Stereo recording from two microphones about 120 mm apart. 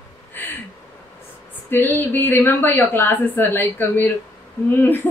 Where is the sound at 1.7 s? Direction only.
15° left (ahead or behind).